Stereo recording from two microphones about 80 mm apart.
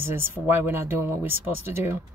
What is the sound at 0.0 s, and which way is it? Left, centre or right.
Speech, right.